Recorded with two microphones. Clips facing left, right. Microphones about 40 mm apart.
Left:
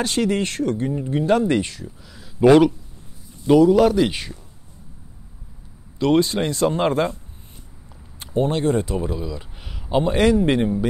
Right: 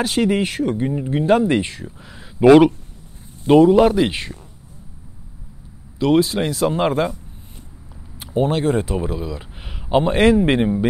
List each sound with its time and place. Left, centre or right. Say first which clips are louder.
0.0 s speech: right 3 dB; centre
1.8 s speech: right 2 dB; right
3.4 s speech: right 2 dB; right
5.9 s speech: right 2 dB; centre
8.2 s speech: right 2 dB; centre